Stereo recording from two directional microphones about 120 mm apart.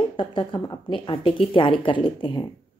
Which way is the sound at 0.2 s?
40° left (ahead or behind).